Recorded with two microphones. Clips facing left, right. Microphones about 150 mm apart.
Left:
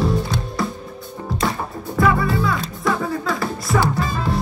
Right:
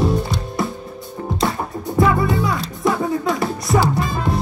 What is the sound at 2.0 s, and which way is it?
Music, 25° right (ahead or behind).